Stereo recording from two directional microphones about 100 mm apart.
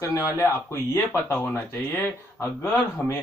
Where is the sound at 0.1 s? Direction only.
30° left (ahead or behind).